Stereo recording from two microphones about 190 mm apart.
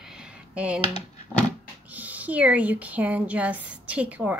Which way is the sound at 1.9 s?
10° right (ahead or behind).